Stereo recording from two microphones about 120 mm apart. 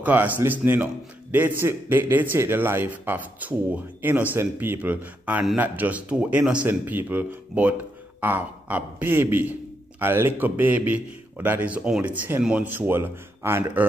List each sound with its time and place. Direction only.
0.0 s a man's voice: 15° right (ahead or behind)